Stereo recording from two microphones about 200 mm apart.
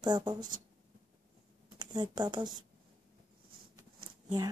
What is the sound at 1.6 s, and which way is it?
Speech, 20° right (ahead or behind).